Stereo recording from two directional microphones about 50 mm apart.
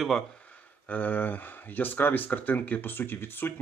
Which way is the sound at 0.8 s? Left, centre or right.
Left.